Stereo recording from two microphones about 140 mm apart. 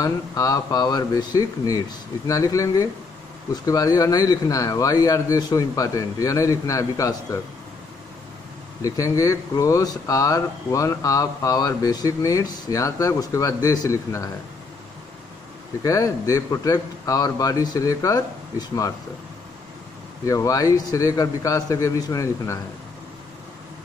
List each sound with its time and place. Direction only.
0.0 s speech: 25° left (ahead or behind)
8.8 s speech: 25° left (ahead or behind)
15.8 s speech: 25° left (ahead or behind)
20.2 s speech: 25° left (ahead or behind)